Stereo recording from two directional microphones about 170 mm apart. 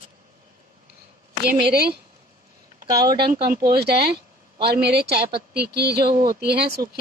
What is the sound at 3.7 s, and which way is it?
A woman's voice, 70° right (ahead or behind).